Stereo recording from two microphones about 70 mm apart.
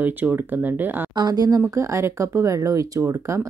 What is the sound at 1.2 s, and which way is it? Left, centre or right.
Speech, right.